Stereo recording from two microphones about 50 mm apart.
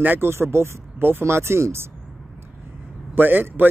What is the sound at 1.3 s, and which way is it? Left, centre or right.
Speech, right.